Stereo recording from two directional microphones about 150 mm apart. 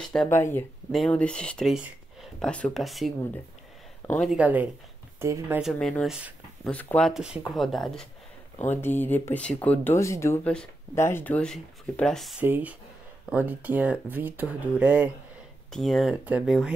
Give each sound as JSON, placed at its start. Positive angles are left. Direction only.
{"t": 0.0, "sound": "speech", "side_deg": 5}
{"t": 0.3, "sound": "speech", "side_deg": 15}
{"t": 4.2, "sound": "speech", "side_deg": -5}
{"t": 5.6, "sound": "speech", "side_deg": 0}
{"t": 6.7, "sound": "speech", "side_deg": 10}
{"t": 8.6, "sound": "speech", "side_deg": 15}
{"t": 12.4, "sound": "speech", "side_deg": -10}
{"t": 15.7, "sound": "speech", "side_deg": 0}